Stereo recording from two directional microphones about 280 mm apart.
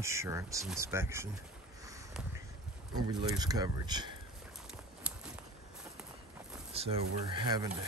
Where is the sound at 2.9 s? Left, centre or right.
Centre.